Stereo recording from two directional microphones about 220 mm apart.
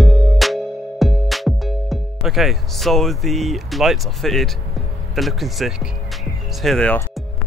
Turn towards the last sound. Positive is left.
turn(degrees=5)  # may be behind; listen again after turning